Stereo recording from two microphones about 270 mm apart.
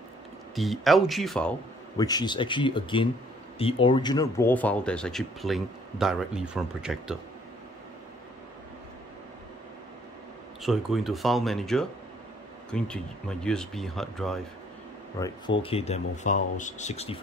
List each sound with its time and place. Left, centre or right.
0.6 s speech: centre
2.0 s speech: centre
10.6 s speech: centre
15.1 s speech: centre